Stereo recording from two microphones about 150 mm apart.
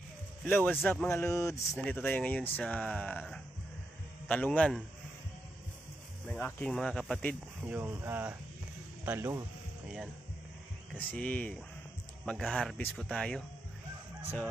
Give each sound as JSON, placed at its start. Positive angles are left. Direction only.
{"t": 0.4, "sound": "speech", "side_deg": 10}
{"t": 1.8, "sound": "speech", "side_deg": 10}
{"t": 6.2, "sound": "speech", "side_deg": 5}
{"t": 7.6, "sound": "speech", "side_deg": -15}
{"t": 11.0, "sound": "speech", "side_deg": 10}